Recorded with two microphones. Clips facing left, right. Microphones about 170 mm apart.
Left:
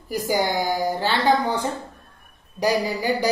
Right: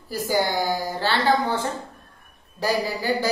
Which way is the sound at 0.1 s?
15° left (ahead or behind).